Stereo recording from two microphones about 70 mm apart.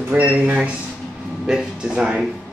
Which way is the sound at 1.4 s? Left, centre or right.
Centre.